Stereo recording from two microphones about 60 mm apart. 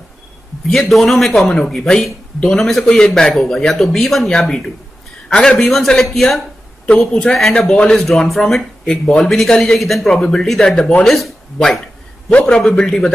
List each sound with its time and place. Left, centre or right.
0.7 s speech: centre
6.9 s speech: centre
7.5 s a man's voice: centre
7.9 s speech: centre
12.3 s a man's voice: left